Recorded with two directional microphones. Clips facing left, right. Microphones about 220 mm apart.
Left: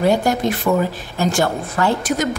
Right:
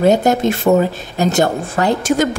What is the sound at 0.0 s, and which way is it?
A woman's voice, 20° right (ahead or behind).